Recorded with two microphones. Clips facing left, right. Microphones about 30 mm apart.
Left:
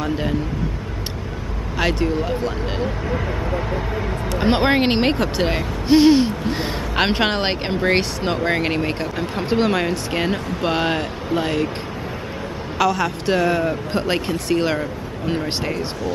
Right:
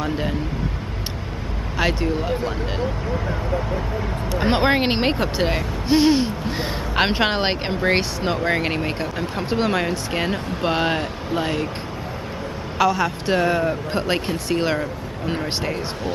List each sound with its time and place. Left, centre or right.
0.0 s speech: centre
1.8 s speech: centre
3.3 s speech: centre
4.3 s speech: centre
12.7 s speech: centre